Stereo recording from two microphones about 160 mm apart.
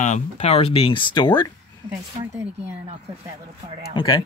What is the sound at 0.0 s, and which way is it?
Speech, 45° left (ahead or behind).